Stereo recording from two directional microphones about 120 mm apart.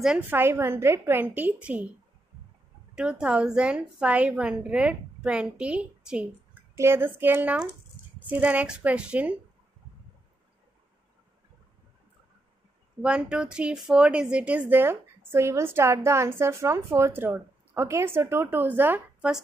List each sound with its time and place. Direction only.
0.2 s a woman's voice: 20° right (ahead or behind)
3.0 s a woman's voice: 10° right (ahead or behind)
6.7 s a woman's voice: 20° right (ahead or behind)
13.0 s a woman's voice: 10° right (ahead or behind)